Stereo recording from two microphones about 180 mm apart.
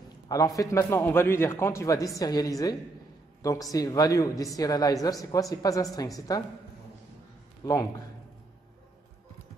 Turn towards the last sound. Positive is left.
turn(degrees=20)  # may be behind; listen again after turning